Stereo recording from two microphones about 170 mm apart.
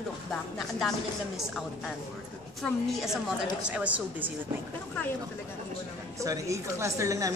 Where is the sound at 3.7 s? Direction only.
10° right (ahead or behind).